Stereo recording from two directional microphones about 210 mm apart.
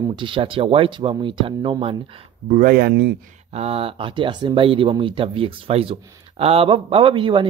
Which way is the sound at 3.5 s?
30° right (ahead or behind).